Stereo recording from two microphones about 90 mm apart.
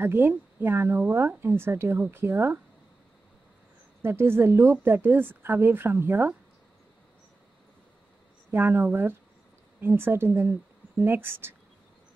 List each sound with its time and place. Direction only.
0.0 s a woman's voice: 25° right (ahead or behind)
4.0 s a woman's voice: 25° right (ahead or behind)
8.5 s a woman's voice: 25° right (ahead or behind)